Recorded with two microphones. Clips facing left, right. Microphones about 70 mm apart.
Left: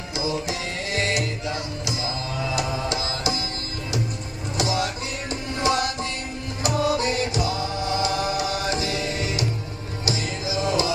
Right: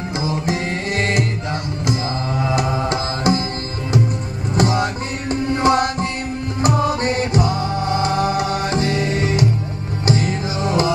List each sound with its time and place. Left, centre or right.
0.2 s music: right
4.6 s tabla: right
6.6 s music: right